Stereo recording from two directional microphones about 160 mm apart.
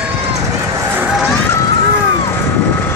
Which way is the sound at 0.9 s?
5° right (ahead or behind).